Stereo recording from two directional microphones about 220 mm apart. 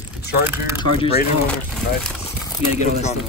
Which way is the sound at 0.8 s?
25° left (ahead or behind).